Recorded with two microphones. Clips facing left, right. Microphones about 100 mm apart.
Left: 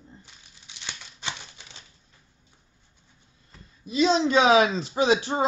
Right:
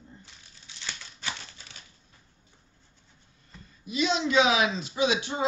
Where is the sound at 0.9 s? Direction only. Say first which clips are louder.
Left 1 dB; 20° left (ahead or behind).